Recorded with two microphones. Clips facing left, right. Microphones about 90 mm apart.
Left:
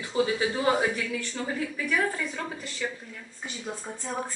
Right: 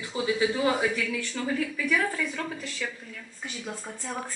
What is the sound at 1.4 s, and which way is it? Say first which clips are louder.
A woman's voice: right 5 dB; 20° left (ahead or behind).